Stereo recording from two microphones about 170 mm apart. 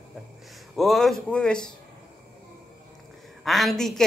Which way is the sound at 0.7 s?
Centre (ahead or behind).